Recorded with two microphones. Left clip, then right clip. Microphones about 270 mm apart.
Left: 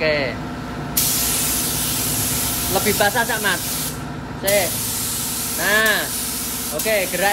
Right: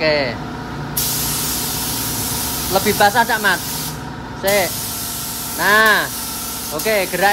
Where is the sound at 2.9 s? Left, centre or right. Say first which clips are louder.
Right 6 dB; centre.